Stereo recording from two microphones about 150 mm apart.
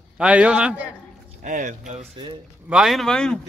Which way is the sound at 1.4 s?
60° right (ahead or behind).